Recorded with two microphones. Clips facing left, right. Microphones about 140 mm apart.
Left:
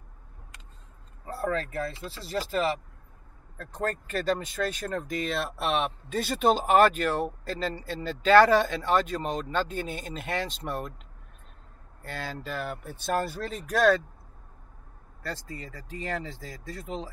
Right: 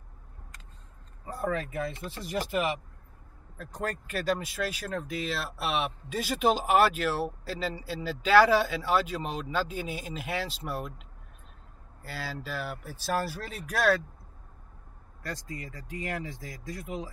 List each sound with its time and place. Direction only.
1.5 s speech: 15° right (ahead or behind)
12.0 s speech: 5° right (ahead or behind)
15.2 s speech: 15° right (ahead or behind)